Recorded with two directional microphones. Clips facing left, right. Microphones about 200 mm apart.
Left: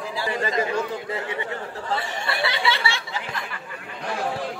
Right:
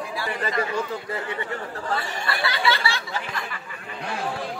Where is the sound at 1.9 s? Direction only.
25° left (ahead or behind).